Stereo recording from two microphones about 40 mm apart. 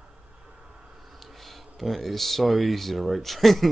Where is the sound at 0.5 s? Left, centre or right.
Right.